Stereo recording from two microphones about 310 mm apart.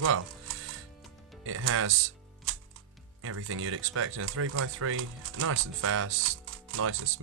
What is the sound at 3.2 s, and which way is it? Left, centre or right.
Speech, right.